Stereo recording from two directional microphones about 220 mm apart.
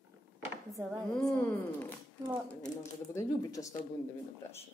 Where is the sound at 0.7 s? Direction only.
15° right (ahead or behind).